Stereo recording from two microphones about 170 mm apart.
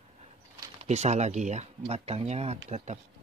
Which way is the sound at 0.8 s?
40° right (ahead or behind).